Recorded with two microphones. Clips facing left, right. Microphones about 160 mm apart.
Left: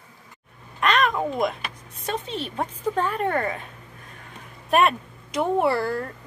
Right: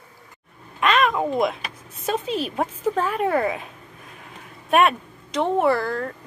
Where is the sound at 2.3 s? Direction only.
30° left (ahead or behind).